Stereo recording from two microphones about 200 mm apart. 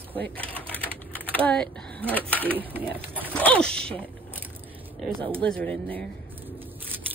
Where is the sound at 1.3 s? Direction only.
5° left (ahead or behind).